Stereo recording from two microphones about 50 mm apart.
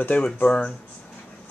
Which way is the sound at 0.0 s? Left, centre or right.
Left.